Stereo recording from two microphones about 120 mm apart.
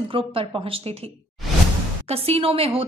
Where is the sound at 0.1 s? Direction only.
50° right (ahead or behind).